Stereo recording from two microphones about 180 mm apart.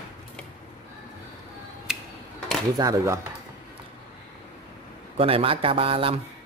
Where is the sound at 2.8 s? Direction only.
20° right (ahead or behind).